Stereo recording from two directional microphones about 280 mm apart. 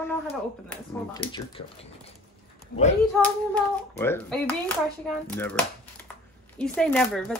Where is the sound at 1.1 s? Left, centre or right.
Centre.